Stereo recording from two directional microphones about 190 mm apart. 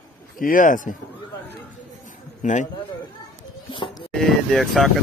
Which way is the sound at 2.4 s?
40° left (ahead or behind).